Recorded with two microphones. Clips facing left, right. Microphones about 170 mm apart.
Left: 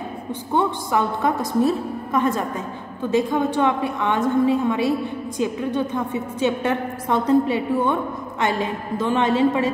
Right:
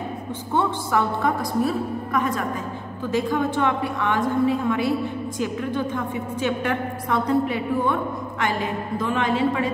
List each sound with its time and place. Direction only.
0.5 s a woman's voice: 15° left (ahead or behind)